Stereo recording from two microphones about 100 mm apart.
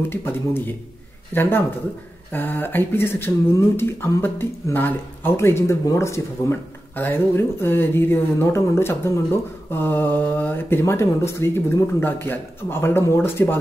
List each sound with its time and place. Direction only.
0.1 s speech: 20° left (ahead or behind)